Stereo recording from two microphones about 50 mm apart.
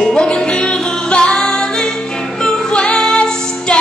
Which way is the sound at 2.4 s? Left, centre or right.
Centre.